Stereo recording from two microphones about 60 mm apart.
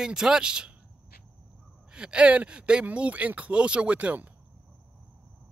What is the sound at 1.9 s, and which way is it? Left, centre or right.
Speech, centre.